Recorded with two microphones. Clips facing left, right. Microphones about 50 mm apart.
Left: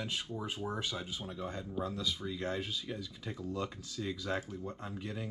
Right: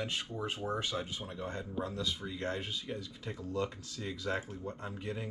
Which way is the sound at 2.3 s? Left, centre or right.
Centre.